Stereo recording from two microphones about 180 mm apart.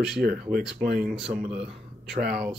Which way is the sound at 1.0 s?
Centre (ahead or behind).